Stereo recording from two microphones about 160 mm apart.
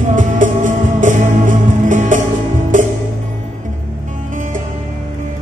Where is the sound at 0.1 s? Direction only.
55° right (ahead or behind).